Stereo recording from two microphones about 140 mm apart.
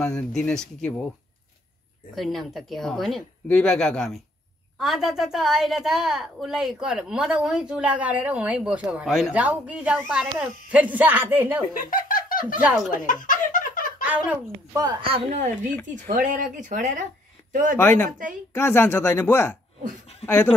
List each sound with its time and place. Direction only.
0.0 s speech: 5° left (ahead or behind)
2.1 s a woman's voice: centre (ahead or behind); by 11.6 s 15° right (ahead or behind)
11.7 s a sound: 80° left
12.9 s a sound: 70° left (ahead or behind); by 14.0 s 85° left
14.0 s speech: 10° right (ahead or behind)
14.8 s speech: 35° right (ahead or behind)
15.9 s speech: 70° right (ahead or behind)
17.7 s speech: 15° left (ahead or behind)